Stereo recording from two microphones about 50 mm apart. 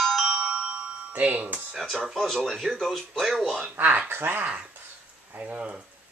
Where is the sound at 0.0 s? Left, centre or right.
Centre.